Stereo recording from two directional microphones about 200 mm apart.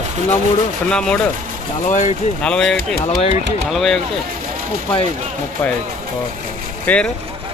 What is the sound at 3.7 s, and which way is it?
Speech, centre (ahead or behind).